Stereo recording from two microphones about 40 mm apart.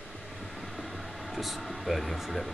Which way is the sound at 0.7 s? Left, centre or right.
Centre.